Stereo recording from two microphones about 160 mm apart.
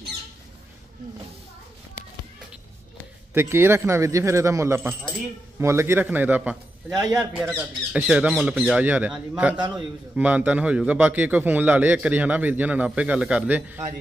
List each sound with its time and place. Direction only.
3.3 s a man's voice: 15° right (ahead or behind)
7.2 s a man's voice: centre (ahead or behind)